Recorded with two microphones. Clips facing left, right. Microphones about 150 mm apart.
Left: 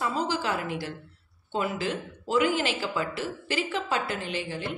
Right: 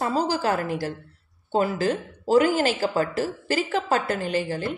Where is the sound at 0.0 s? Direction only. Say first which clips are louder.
Right 5 dB; 40° right (ahead or behind).